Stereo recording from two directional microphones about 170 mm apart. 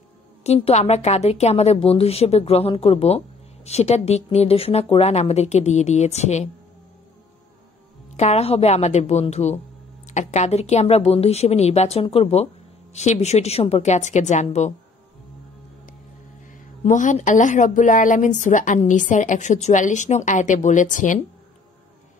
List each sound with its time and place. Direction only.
0.4 s speech: 40° left (ahead or behind)
8.2 s a woman's voice: 40° left (ahead or behind)
16.8 s a woman's voice: 45° left (ahead or behind)